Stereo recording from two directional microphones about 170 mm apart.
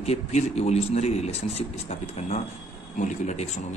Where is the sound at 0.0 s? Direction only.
40° left (ahead or behind).